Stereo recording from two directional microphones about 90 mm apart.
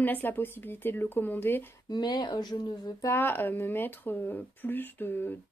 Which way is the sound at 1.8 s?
50° left (ahead or behind).